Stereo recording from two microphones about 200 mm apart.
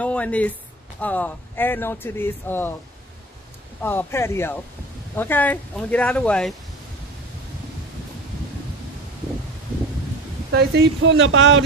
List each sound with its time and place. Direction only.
0.0 s a sound: 5° left (ahead or behind)
1.0 s speech: 10° left (ahead or behind)
3.8 s speech: 10° left (ahead or behind)
10.5 s speech: 55° right (ahead or behind); by 11.4 s 70° right (ahead or behind)